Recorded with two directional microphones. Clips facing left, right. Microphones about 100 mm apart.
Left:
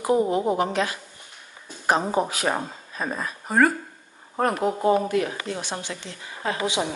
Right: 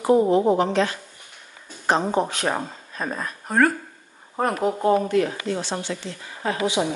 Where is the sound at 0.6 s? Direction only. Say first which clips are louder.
Right 3 dB; 10° left (ahead or behind).